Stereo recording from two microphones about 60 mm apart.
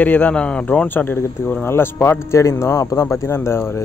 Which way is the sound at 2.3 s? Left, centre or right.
Left.